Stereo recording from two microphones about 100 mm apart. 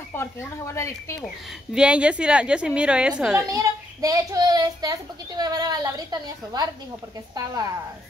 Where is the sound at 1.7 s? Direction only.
10° right (ahead or behind).